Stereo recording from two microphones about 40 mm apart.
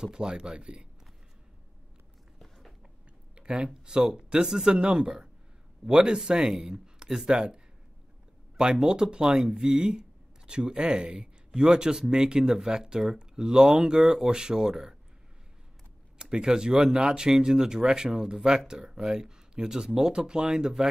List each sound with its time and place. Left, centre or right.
0.0 s speech: centre
2.3 s biting: centre
3.3 s speech: right
16.2 s speech: centre